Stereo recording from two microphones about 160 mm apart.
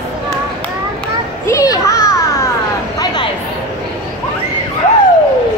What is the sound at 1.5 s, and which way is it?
Children playing, 20° left (ahead or behind).